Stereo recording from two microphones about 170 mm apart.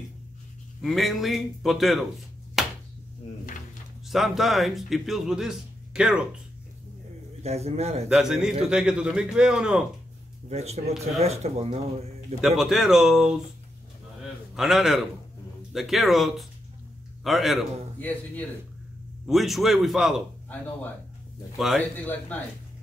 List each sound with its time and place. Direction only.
0.8 s speech: centre (ahead or behind)
2.6 s chopping: centre (ahead or behind)
4.1 s speech: centre (ahead or behind)
7.4 s speech: 40° right (ahead or behind)
8.1 s speech: 5° right (ahead or behind)
10.5 s speech: 40° right (ahead or behind)
12.4 s speech: centre (ahead or behind)
14.5 s speech: centre (ahead or behind)
17.9 s speech: 10° left (ahead or behind)
19.2 s speech: centre (ahead or behind)
21.5 s speech: centre (ahead or behind)
21.9 s speech: 10° left (ahead or behind)